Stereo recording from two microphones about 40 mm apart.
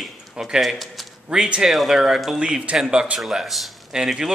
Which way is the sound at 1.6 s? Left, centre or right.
Centre.